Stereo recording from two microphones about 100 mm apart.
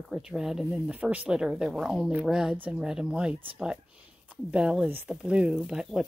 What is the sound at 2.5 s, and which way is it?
Speech, 15° right (ahead or behind).